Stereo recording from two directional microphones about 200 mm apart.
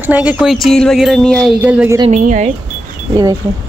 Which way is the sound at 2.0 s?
40° right (ahead or behind).